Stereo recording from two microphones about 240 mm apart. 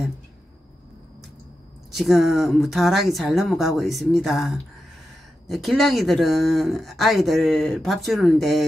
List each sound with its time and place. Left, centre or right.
2.0 s speech: centre